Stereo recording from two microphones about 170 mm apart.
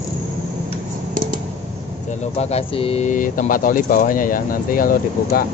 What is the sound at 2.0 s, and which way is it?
Speech, 40° left (ahead or behind).